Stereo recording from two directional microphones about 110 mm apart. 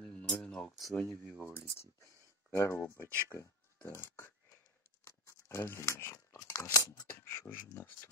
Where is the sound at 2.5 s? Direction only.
25° left (ahead or behind).